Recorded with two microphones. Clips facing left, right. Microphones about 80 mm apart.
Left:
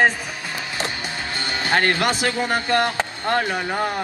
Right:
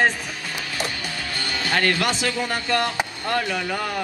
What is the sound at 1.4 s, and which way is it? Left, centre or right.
Speech, left.